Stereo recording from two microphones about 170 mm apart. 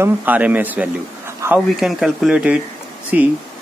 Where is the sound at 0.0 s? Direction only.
10° right (ahead or behind).